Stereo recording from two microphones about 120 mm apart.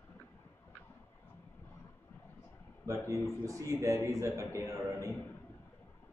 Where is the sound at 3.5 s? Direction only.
25° right (ahead or behind).